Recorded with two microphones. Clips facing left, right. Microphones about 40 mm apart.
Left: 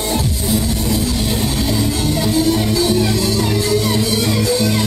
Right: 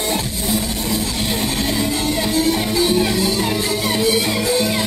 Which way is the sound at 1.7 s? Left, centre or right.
Right.